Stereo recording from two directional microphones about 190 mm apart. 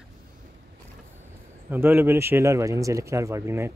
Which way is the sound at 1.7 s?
10° right (ahead or behind).